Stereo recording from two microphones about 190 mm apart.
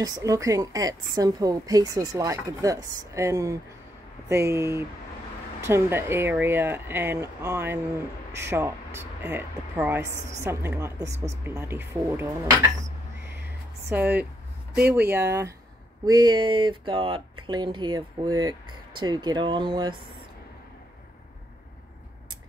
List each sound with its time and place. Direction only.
0.0 s speech: 15° right (ahead or behind)
13.8 s speech: 10° right (ahead or behind)
14.8 s speech: 55° right (ahead or behind)
16.1 s speech: 20° right (ahead or behind)